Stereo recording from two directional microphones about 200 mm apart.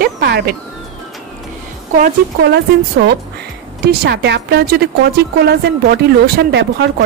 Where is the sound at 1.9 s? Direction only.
50° right (ahead or behind).